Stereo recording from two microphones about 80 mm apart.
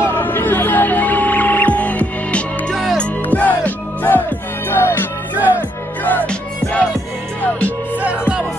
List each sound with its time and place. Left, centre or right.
0.0 s music: left
2.7 s music: centre
3.0 s music: centre
5.3 s music: right
6.0 s music: centre
8.0 s music: centre